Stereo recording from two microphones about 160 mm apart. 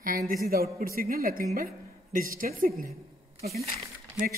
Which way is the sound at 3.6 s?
40° right (ahead or behind).